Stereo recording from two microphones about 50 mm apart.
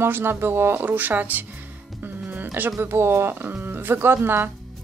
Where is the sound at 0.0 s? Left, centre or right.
Right.